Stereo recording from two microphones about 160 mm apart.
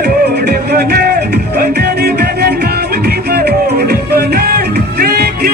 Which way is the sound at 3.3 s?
80° right.